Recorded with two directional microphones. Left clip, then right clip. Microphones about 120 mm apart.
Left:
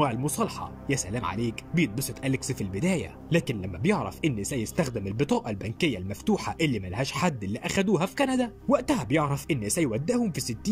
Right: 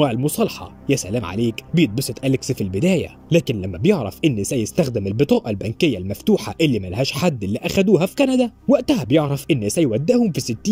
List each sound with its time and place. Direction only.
0.0 s speech: 15° right (ahead or behind)